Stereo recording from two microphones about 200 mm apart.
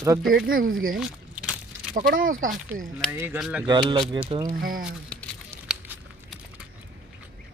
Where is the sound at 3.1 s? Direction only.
10° right (ahead or behind).